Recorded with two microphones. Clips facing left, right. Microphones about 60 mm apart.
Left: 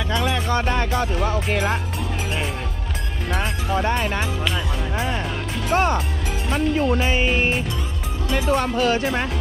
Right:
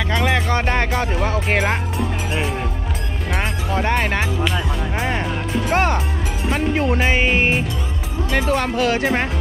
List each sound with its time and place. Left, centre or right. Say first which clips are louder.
0.2 s music: right 4 dB; right
0.7 s music: right 2 dB; right
3.3 s music: right 1 dB; right
3.9 s music: right 3 dB; right
4.4 s music: right 3 dB; centre
5.7 s music: even; right
8.3 s music: right 1 dB; right
9.0 s speech: right 3 dB; right